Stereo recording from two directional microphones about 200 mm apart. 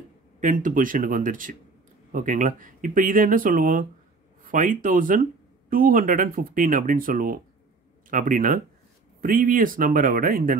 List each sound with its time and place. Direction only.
0.4 s speech: 40° right (ahead or behind)